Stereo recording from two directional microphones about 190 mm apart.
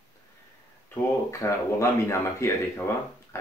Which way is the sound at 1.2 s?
15° left (ahead or behind).